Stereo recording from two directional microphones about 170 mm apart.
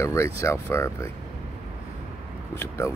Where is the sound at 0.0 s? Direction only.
15° left (ahead or behind).